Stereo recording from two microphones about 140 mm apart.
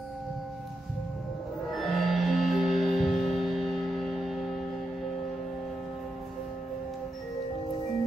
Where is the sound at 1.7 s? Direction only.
Centre (ahead or behind).